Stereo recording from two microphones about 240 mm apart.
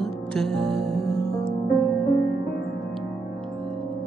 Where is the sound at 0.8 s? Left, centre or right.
Right.